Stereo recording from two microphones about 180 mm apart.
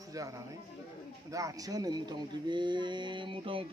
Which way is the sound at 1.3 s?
20° right (ahead or behind).